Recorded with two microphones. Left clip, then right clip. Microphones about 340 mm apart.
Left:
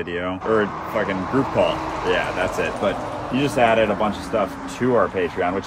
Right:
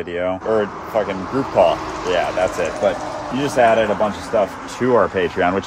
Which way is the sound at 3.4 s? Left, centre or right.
Centre.